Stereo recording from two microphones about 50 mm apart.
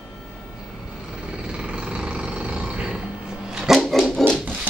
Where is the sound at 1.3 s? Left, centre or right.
Centre.